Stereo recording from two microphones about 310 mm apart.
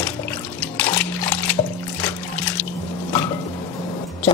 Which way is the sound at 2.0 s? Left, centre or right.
Centre.